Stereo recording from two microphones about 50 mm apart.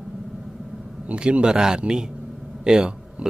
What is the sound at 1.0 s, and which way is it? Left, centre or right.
A man's voice, right.